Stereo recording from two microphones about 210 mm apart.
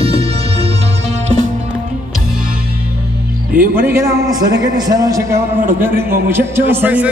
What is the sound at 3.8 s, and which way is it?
A man's voice, 10° right (ahead or behind).